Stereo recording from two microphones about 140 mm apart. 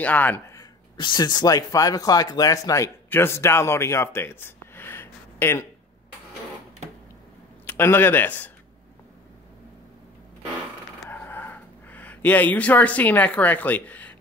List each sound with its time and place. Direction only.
0.0 s speech: 10° left (ahead or behind)
0.6 s speech: 30° left (ahead or behind)
7.6 s speech: 15° left (ahead or behind)
11.1 s a sound: 15° left (ahead or behind)